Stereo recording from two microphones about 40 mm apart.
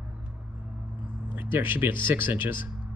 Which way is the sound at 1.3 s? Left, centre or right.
Right.